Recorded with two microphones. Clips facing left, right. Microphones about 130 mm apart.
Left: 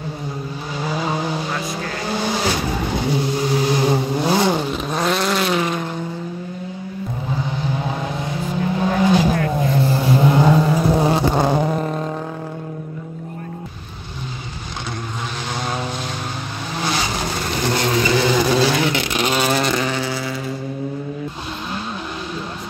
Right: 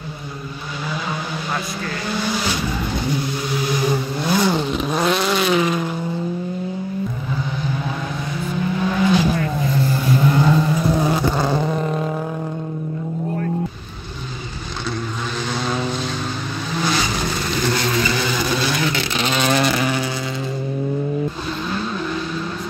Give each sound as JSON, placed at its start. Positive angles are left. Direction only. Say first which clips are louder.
{"t": 0.8, "sound": "vehicle", "louder": "left 5 dB", "side_deg": 35}
{"t": 4.5, "sound": "vehicle", "louder": "even", "side_deg": 10}
{"t": 4.7, "sound": "vehicle", "louder": "right 1 dB", "side_deg": 0}
{"t": 8.7, "sound": "vehicle", "louder": "left 2 dB", "side_deg": 35}
{"t": 9.7, "sound": "vehicle", "louder": "left 1 dB", "side_deg": 25}
{"t": 11.0, "sound": "cat", "louder": "left 2 dB", "side_deg": 25}
{"t": 11.8, "sound": "vehicle", "louder": "right 1 dB", "side_deg": 0}
{"t": 15.6, "sound": "vehicle", "louder": "right 2 dB", "side_deg": 15}
{"t": 16.7, "sound": "vehicle", "louder": "right 1 dB", "side_deg": 25}
{"t": 18.9, "sound": "a sound", "louder": "left 2 dB", "side_deg": 15}